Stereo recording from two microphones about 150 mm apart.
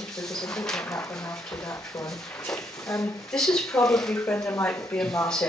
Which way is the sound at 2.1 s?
5° left (ahead or behind).